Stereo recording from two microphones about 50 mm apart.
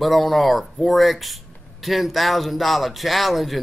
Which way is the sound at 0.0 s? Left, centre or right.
Centre.